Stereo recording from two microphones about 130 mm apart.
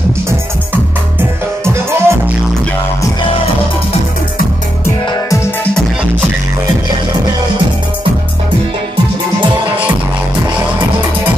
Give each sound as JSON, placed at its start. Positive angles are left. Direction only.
{"t": 1.6, "sound": "music", "side_deg": -20}
{"t": 4.8, "sound": "music", "side_deg": 20}